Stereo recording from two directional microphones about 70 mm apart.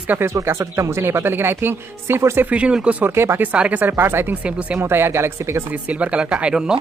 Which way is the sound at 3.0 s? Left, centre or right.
Right.